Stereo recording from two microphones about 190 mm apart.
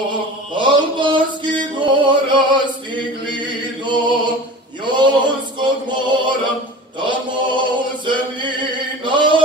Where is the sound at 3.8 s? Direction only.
25° right (ahead or behind).